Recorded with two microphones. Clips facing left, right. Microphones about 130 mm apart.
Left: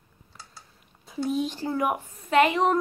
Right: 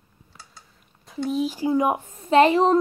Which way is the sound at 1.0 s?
Centre (ahead or behind).